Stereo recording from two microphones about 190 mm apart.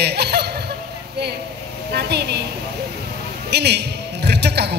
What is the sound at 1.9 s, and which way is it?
Speech, 60° right (ahead or behind).